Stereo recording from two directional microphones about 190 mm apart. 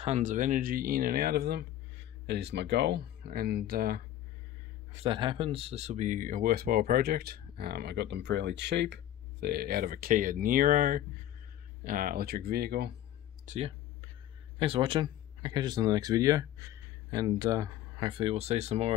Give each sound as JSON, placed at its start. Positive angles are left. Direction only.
{"t": 0.0, "sound": "speech", "side_deg": -40}
{"t": 4.9, "sound": "speech", "side_deg": -25}
{"t": 13.5, "sound": "speech", "side_deg": -30}